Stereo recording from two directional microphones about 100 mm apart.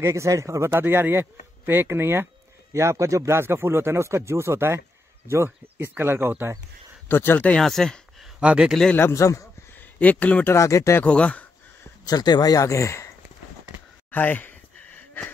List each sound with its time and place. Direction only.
0.0 s speech: 30° right (ahead or behind)
7.1 s speech: 20° left (ahead or behind); by 8.3 s 5° left (ahead or behind)
8.4 s speech: 10° right (ahead or behind)
8.9 s speech: 25° left (ahead or behind)
9.8 s speech: 15° left (ahead or behind)
10.5 s speech: 30° left (ahead or behind)
11.1 s speech: 10° left (ahead or behind)
12.0 s speech: 40° left (ahead or behind)
14.1 s a sound: 20° left (ahead or behind)